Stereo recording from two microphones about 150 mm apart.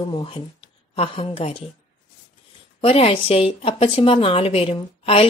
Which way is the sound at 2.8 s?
40° left (ahead or behind).